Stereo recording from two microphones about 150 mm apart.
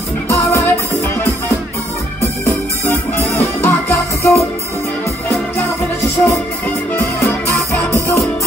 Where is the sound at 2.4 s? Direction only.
20° left (ahead or behind).